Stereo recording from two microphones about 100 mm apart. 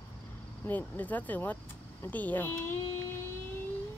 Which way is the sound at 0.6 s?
15° left (ahead or behind).